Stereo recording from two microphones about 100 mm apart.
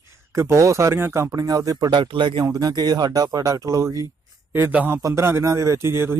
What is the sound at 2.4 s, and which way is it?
A man's voice, 40° right (ahead or behind).